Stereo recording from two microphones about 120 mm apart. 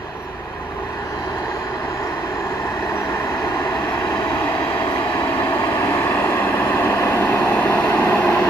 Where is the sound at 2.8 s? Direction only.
20° left (ahead or behind).